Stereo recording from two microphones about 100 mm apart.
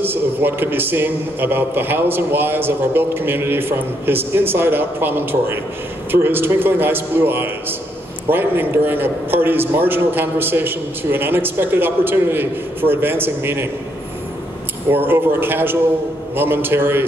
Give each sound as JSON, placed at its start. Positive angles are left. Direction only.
{"t": 0.0, "sound": "a man's voice", "side_deg": -20}
{"t": 14.9, "sound": "a man's voice", "side_deg": -20}